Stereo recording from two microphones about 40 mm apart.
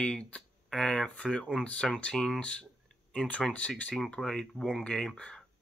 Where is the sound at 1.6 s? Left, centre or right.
Left.